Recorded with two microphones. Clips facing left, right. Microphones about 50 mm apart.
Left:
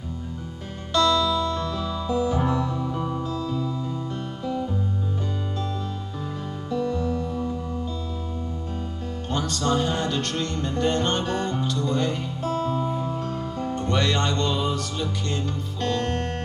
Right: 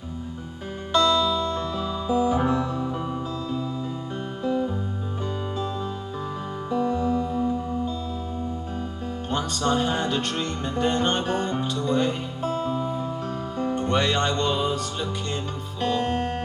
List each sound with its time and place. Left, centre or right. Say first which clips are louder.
0.9 s music: even; right
6.7 s music: right 2 dB; centre
9.3 s music: even; centre